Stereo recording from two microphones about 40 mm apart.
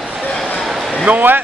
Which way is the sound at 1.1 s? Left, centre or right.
Right.